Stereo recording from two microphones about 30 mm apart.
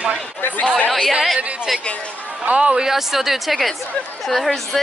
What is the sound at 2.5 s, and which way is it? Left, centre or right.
Speech, right.